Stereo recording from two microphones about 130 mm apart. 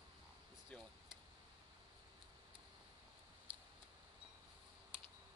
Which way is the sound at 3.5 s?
45° right (ahead or behind).